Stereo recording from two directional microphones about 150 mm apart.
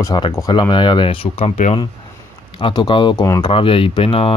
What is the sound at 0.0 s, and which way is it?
Speech, 25° left (ahead or behind).